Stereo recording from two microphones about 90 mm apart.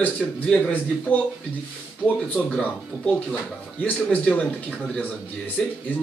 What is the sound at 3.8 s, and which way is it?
Speech, 15° left (ahead or behind).